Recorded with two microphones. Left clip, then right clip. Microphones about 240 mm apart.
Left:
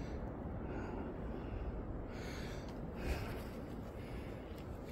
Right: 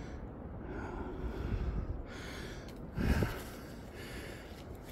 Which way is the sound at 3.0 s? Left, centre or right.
Centre.